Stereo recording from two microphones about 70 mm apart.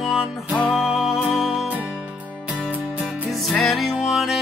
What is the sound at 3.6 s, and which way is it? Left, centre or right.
Music, centre.